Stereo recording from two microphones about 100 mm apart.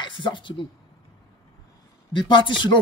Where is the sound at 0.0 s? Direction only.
55° left (ahead or behind).